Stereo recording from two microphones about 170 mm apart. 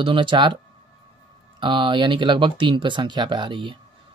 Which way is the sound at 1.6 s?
30° right (ahead or behind).